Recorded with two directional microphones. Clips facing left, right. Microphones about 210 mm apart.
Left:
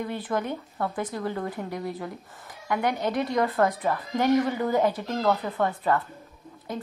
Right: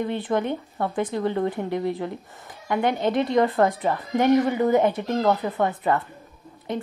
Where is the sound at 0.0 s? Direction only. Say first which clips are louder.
Right 5 dB; 25° right (ahead or behind).